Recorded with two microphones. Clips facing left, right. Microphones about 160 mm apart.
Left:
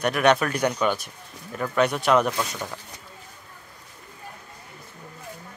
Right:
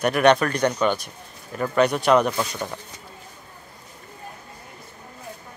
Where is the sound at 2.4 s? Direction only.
15° right (ahead or behind).